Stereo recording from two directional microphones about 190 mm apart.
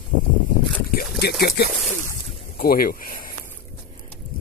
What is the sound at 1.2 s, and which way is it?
Speech, 60° left (ahead or behind).